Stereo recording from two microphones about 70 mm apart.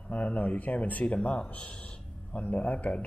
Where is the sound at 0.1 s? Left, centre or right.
Left.